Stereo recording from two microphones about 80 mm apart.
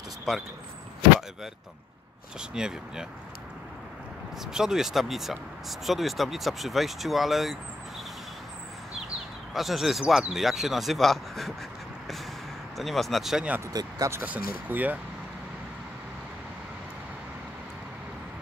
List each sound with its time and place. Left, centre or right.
2.5 s speech: centre
4.5 s speech: centre
9.5 s speech: centre
12.7 s speech: centre
13.7 s speech: right
14.2 s speech: right